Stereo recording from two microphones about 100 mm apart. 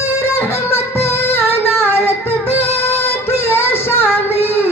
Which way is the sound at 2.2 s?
85° left.